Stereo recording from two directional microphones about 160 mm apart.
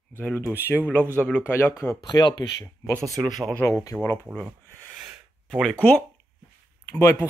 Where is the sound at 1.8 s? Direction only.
20° left (ahead or behind).